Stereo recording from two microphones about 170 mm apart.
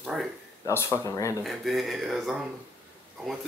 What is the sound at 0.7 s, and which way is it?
Speech, 15° left (ahead or behind).